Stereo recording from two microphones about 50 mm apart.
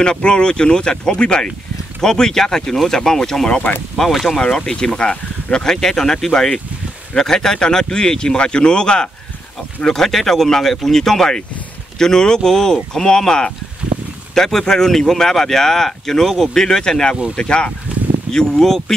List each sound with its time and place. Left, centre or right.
0.0 s speech: centre
3.9 s speech: centre
4.4 s speech: centre